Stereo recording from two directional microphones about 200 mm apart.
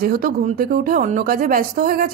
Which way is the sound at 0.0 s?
45° right (ahead or behind).